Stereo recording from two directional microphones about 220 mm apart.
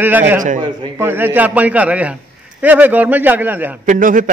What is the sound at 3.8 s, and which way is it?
Speech, 40° right (ahead or behind).